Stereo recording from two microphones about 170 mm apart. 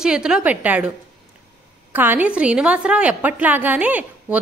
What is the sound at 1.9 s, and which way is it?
A woman's voice, 10° right (ahead or behind).